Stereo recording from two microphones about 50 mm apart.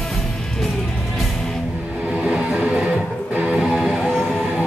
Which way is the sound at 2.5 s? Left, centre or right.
Centre.